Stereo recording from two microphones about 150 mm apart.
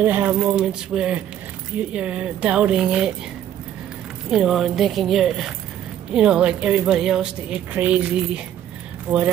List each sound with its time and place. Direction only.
0.0 s speech: 10° right (ahead or behind)
4.3 s speech: 5° right (ahead or behind)